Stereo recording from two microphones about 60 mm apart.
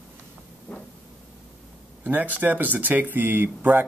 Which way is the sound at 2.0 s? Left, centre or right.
Right.